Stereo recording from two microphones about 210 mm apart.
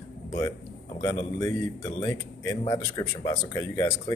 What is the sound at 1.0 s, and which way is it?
Speech, 15° left (ahead or behind).